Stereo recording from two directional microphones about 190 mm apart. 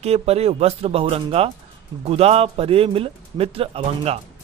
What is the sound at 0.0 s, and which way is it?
Speech, 35° right (ahead or behind).